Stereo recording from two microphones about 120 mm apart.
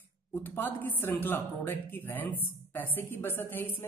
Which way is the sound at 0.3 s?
15° left (ahead or behind).